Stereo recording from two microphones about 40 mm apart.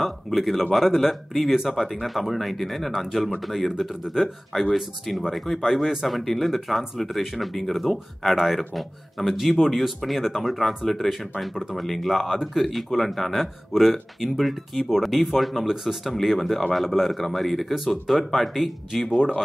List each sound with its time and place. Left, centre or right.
0.0 s speech: centre
19.0 s speech: centre